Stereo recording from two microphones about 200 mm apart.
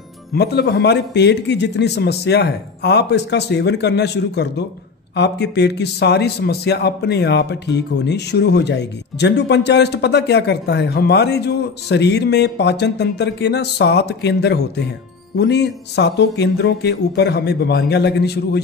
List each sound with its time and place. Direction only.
0.3 s a man's voice: 55° left (ahead or behind)